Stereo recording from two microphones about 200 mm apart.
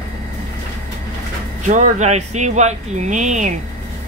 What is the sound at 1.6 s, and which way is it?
Speech, 40° right (ahead or behind).